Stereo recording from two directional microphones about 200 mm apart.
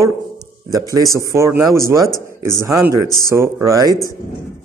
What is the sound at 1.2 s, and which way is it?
A man's voice, 15° right (ahead or behind).